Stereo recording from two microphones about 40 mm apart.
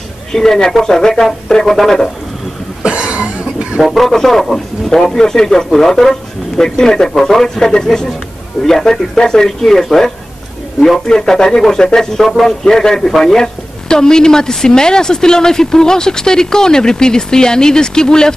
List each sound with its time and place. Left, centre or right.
0.3 s speech: centre
2.8 s cough: right
3.8 s speech: centre